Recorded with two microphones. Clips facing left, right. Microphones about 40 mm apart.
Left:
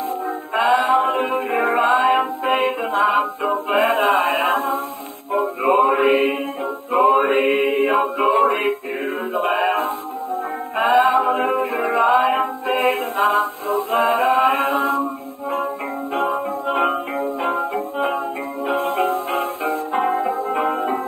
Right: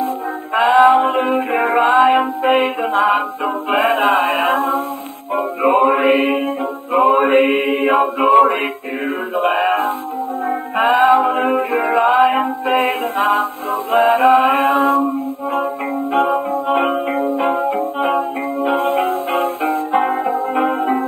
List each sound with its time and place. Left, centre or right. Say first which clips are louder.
0.0 s music: right 3 dB; centre
1.5 s music: right 2 dB; centre
4.3 s a sound: right 3 dB; centre
5.6 s mantra: right 3 dB; right
5.9 s music: right 2 dB; centre
7.3 s mantra: right 3 dB; centre
8.4 s music: right 4 dB; centre
10.8 s music: right 3 dB; right
16.1 s music: right 5 dB; right
18.0 s music: right 5 dB; right